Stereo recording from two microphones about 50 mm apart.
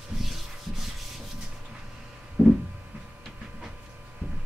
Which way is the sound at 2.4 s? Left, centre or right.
Right.